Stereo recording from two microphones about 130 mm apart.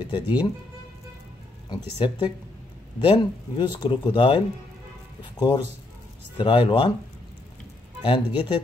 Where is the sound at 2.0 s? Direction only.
35° left (ahead or behind).